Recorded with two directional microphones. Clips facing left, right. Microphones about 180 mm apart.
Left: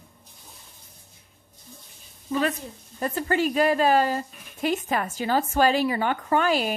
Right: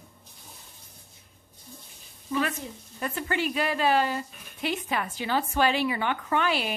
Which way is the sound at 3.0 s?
40° left (ahead or behind).